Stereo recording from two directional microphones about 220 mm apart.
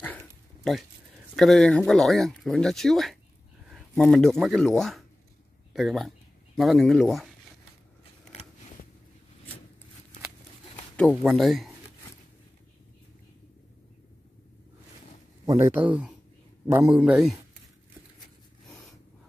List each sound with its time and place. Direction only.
0.0 s a sound: 5° left (ahead or behind)
1.3 s speech: centre (ahead or behind)
8.0 s biting: 30° left (ahead or behind)
11.0 s speech: 5° left (ahead or behind)
15.4 s speech: 10° right (ahead or behind)